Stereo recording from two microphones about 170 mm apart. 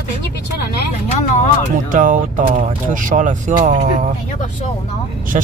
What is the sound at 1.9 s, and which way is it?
Speech, 50° right (ahead or behind).